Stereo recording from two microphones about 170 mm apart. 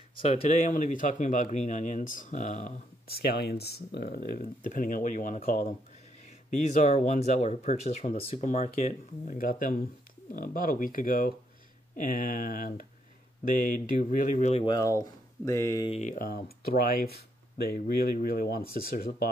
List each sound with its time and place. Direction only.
0.1 s speech: 40° left (ahead or behind)
3.1 s speech: 65° left (ahead or behind)
14.5 s speech: 30° left (ahead or behind)
15.9 s speech: 45° left (ahead or behind)
16.2 s speech: 60° left (ahead or behind)